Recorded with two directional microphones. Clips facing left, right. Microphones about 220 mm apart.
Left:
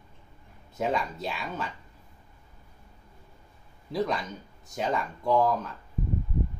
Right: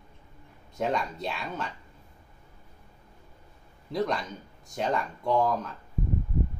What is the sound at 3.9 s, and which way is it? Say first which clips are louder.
Speech: even; centre (ahead or behind).